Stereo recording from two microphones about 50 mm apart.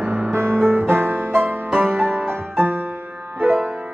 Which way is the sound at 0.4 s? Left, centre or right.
Right.